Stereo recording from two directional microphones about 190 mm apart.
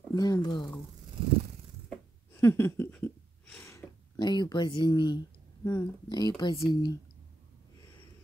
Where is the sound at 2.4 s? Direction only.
10° left (ahead or behind).